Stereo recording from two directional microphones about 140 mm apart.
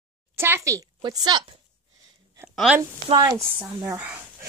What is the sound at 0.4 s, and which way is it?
A woman's voice, 20° right (ahead or behind).